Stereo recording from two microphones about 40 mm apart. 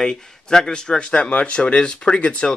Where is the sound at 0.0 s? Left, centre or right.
Centre.